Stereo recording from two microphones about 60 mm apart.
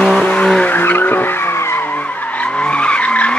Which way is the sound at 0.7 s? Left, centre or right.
Left.